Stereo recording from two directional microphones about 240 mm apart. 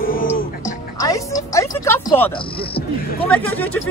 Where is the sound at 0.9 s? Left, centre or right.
Centre.